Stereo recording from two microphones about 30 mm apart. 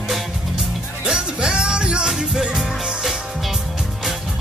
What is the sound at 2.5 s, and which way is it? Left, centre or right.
Music, centre.